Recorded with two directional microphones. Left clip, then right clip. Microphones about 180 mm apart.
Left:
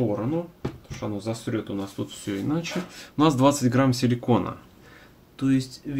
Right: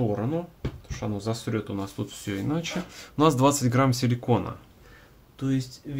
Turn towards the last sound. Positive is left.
turn(degrees=10)  # may be behind; listen again after turning